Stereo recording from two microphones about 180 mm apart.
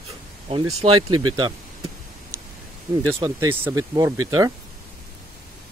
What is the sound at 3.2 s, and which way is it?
Speech, 15° right (ahead or behind).